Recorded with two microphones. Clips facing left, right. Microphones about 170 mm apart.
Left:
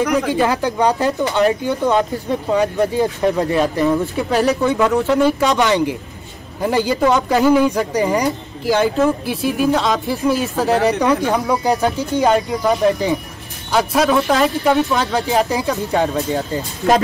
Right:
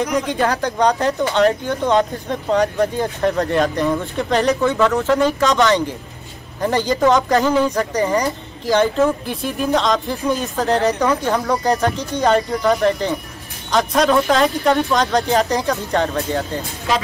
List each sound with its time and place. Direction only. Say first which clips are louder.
0.3 s speech: left 2 dB; 5° left (ahead or behind)
16.8 s a woman's voice: left 6 dB; 50° left (ahead or behind)